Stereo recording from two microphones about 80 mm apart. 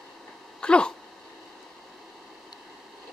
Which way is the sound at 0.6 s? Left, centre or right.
Centre.